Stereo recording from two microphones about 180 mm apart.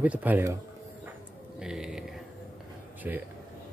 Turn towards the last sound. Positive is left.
turn(degrees=-10)  # may be behind; listen again after turning